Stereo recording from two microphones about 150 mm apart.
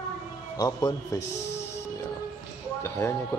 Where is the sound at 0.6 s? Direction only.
25° left (ahead or behind).